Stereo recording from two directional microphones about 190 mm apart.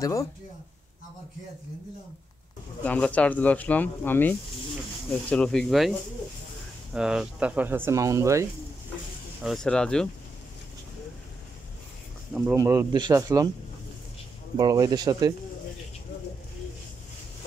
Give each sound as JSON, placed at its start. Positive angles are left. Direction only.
{"t": 0.0, "sound": "speech", "side_deg": 15}
{"t": 2.8, "sound": "speech", "side_deg": 5}
{"t": 9.4, "sound": "speech", "side_deg": 0}
{"t": 12.4, "sound": "speech", "side_deg": -15}
{"t": 14.6, "sound": "speech", "side_deg": -20}